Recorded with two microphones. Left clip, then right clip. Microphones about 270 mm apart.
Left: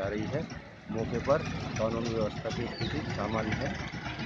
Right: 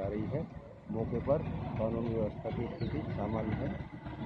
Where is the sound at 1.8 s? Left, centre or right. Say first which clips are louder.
Left 3 dB; left.